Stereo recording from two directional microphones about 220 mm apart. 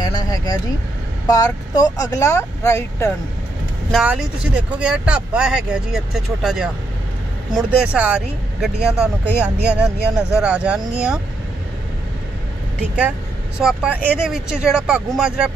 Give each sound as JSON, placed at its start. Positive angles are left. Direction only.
{"t": 0.0, "sound": "vehicle", "side_deg": 15}
{"t": 1.2, "sound": "speech", "side_deg": 15}
{"t": 3.9, "sound": "speech", "side_deg": -5}
{"t": 13.6, "sound": "speech", "side_deg": -5}